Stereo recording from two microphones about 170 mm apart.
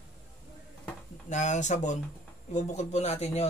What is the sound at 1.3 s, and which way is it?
Speech, 45° left (ahead or behind).